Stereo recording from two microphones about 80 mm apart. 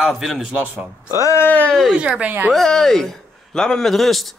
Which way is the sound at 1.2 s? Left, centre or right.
Left.